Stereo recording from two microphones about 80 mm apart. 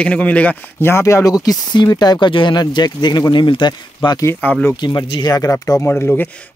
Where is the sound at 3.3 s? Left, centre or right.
Left.